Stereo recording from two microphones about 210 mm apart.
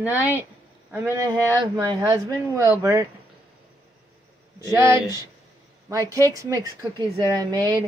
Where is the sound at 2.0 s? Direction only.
15° right (ahead or behind).